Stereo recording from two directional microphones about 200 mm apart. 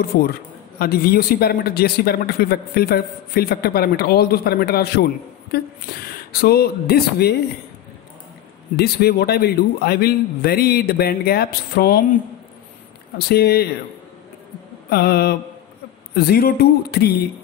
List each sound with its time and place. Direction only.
0.1 s speech: 50° left (ahead or behind)
8.7 s speech: 50° left (ahead or behind)
13.3 s speech: 55° left (ahead or behind)
14.9 s speech: 50° left (ahead or behind)